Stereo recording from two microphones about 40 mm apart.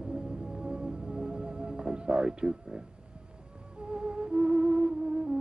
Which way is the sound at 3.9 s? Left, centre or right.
Right.